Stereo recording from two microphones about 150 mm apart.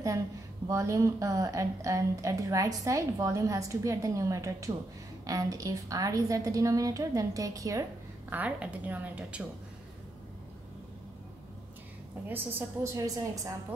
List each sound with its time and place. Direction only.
0.7 s a woman's voice: 20° right (ahead or behind)
8.3 s a woman's voice: 10° right (ahead or behind)
12.3 s a woman's voice: 15° right (ahead or behind)